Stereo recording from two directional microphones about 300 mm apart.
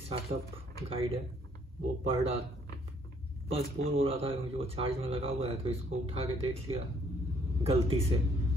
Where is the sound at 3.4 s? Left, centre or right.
Centre.